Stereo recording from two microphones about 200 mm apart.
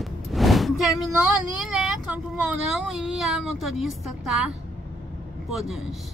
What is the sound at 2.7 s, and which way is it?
A woman's voice, 5° right (ahead or behind).